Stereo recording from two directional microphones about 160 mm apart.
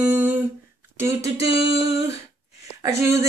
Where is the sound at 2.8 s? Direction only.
20° right (ahead or behind).